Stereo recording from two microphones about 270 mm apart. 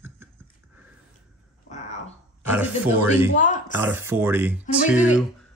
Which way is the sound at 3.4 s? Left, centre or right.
Left.